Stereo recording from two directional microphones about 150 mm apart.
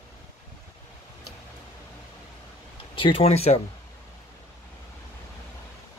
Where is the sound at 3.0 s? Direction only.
35° left (ahead or behind).